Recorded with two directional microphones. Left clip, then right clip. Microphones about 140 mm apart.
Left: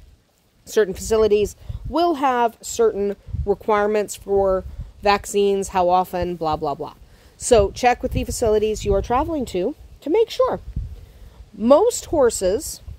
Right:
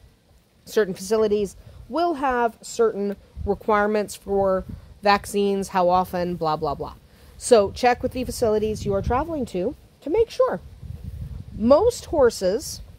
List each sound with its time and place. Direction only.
0.7 s speech: 25° left (ahead or behind)
11.6 s speech: 35° left (ahead or behind)